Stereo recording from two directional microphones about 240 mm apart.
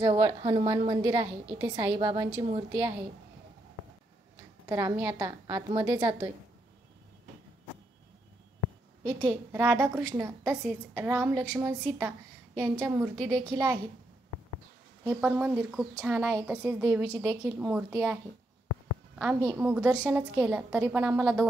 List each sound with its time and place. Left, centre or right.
0.0 s a woman's voice: right
4.6 s a woman's voice: centre
9.0 s a woman's voice: centre
9.5 s a woman's voice: centre
15.0 s a woman's voice: centre
19.4 s a woman's voice: centre